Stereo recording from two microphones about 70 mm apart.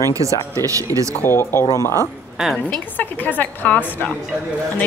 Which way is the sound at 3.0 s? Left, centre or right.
Left.